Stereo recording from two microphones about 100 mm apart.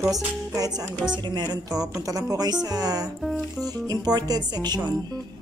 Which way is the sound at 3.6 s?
40° right (ahead or behind).